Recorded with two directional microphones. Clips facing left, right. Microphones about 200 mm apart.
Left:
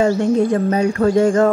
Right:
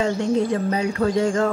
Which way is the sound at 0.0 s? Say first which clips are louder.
Left 5 dB; 45° left (ahead or behind).